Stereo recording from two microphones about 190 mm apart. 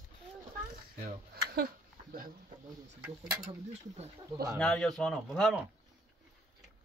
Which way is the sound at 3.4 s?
35° right (ahead or behind).